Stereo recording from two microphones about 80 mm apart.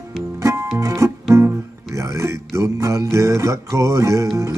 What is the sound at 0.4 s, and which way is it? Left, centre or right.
Music, right.